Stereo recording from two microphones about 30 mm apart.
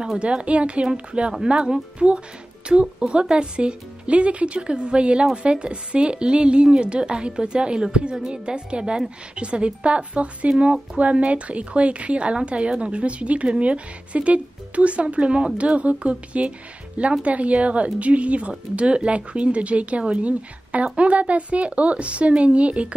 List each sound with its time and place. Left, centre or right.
0.2 s a woman's voice: right